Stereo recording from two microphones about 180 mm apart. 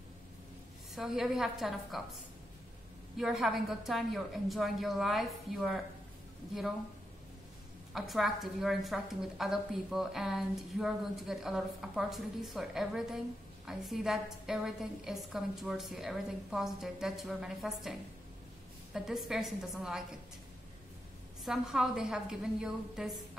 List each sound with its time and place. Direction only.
0.9 s a woman's voice: centre (ahead or behind)
3.2 s a woman's voice: centre (ahead or behind)
7.9 s a woman's voice: centre (ahead or behind)
18.9 s a woman's voice: centre (ahead or behind)
21.5 s a woman's voice: 5° right (ahead or behind)